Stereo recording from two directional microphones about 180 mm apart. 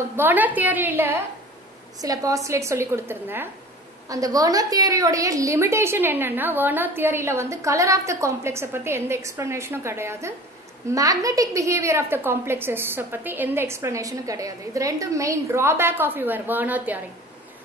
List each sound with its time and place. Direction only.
0.1 s a woman's voice: 10° right (ahead or behind)